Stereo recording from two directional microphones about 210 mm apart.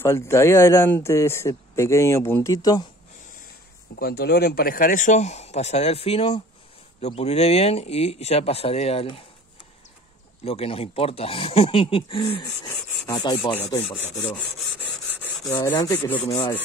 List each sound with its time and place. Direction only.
0.0 s speech: 10° left (ahead or behind)
3.9 s speech: 45° left (ahead or behind); by 9.2 s 25° left (ahead or behind)
10.4 s speech: 30° left (ahead or behind)
13.0 s rub: 20° left (ahead or behind)
15.5 s speech: 15° left (ahead or behind)
16.3 s speech: 25° left (ahead or behind)